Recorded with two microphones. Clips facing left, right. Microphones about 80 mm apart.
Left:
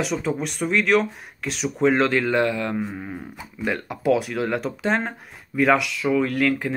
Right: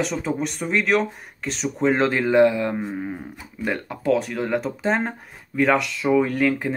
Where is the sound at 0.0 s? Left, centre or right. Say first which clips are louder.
Even; centre.